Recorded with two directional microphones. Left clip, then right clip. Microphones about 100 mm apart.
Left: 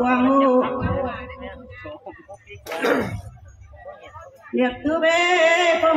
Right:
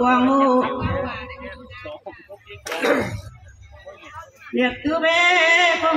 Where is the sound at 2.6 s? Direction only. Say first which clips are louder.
Right 1 dB; 15° right (ahead or behind).